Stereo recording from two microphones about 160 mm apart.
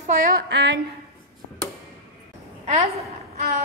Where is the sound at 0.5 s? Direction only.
90° right.